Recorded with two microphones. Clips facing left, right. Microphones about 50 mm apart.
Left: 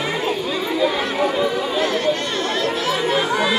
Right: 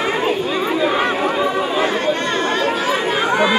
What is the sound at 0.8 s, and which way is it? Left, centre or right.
Chatter, right.